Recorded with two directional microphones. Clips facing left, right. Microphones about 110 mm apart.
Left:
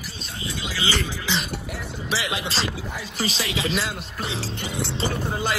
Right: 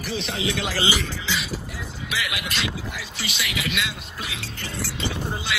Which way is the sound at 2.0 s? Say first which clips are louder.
Left 3 dB; 30° left (ahead or behind).